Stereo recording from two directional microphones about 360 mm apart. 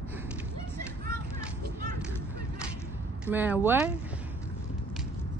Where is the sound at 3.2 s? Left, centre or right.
Centre.